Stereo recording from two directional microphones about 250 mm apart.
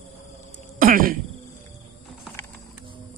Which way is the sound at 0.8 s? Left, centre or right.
Right.